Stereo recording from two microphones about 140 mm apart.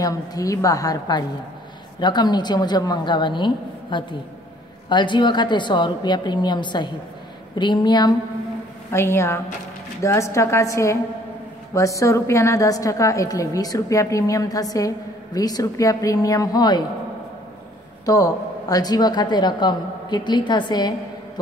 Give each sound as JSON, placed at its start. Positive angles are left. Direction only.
{"t": 0.0, "sound": "a woman's voice", "side_deg": 25}
{"t": 8.9, "sound": "a woman's voice", "side_deg": 20}
{"t": 18.0, "sound": "a woman's voice", "side_deg": 25}